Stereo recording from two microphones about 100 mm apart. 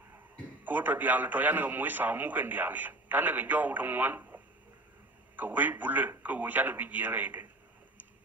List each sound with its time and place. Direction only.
0.7 s speech: 15° right (ahead or behind)